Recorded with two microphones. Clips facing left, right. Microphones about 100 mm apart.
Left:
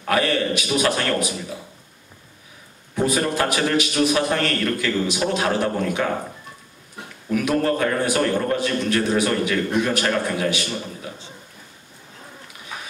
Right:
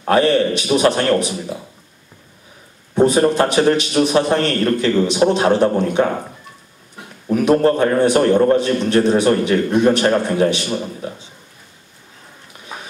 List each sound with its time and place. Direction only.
0.0 s a man's voice: 30° right (ahead or behind)
2.9 s a man's voice: 30° right (ahead or behind)
7.2 s a man's voice: 35° right (ahead or behind)